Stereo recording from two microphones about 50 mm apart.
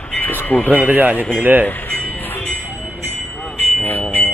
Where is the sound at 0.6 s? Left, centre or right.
Right.